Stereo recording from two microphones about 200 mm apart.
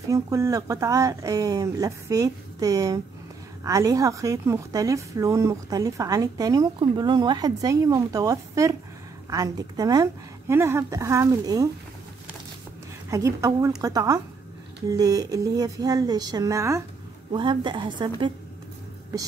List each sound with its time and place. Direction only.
0.1 s a woman's voice: 15° right (ahead or behind)
13.1 s a woman's voice: 15° right (ahead or behind)